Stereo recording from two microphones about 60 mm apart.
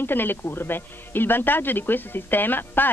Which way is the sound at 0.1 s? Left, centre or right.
Left.